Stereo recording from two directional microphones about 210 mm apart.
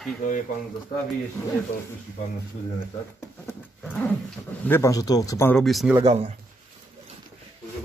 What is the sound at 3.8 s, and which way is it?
Roaring cats, centre (ahead or behind).